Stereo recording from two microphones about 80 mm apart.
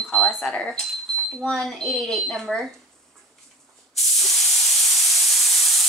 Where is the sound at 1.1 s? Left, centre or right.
Centre.